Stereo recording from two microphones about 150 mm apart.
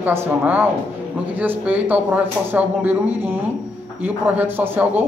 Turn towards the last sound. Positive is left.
turn(degrees=-10)  # may be behind; listen again after turning